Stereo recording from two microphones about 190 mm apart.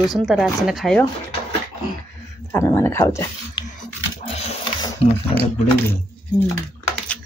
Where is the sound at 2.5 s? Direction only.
15° left (ahead or behind).